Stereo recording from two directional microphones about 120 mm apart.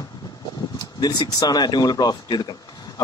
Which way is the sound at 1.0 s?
35° left (ahead or behind).